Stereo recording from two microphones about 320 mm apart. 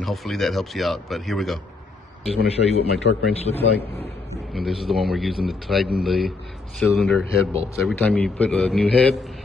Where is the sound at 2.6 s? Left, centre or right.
Left.